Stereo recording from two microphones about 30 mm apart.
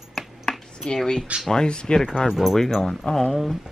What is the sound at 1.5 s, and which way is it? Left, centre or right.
Speech, left.